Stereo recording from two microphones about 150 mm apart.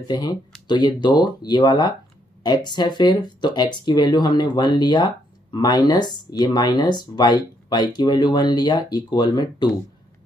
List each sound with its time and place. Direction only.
0.1 s speech: 30° left (ahead or behind)